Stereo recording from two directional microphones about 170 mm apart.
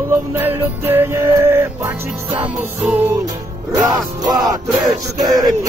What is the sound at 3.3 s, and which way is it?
Music, 20° right (ahead or behind).